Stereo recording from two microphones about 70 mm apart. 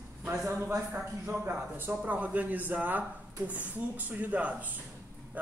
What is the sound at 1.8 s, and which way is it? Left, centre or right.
Speech, right.